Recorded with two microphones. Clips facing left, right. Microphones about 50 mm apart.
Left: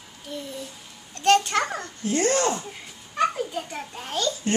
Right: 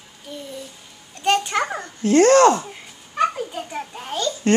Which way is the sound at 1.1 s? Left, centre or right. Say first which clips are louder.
Even; centre.